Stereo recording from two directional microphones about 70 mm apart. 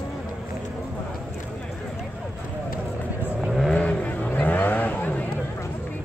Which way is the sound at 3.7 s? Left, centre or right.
Left.